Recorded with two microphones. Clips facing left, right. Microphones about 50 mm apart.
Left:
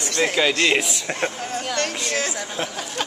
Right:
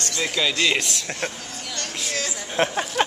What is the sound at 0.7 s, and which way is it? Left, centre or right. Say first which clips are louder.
Speech: left 3 dB; centre.